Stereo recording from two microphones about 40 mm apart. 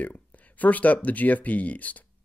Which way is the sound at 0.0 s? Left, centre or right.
Left.